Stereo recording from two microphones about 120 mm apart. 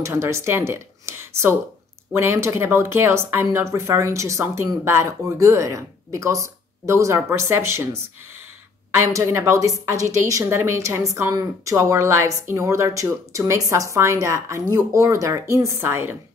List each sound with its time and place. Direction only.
0.0 s a woman's voice: 25° right (ahead or behind)